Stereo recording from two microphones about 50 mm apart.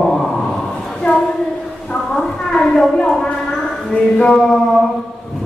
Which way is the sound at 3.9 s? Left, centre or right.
Centre.